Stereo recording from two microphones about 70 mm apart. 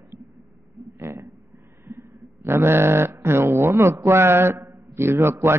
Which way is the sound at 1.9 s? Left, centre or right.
Right.